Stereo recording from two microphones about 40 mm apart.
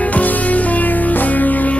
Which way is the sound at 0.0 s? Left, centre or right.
Left.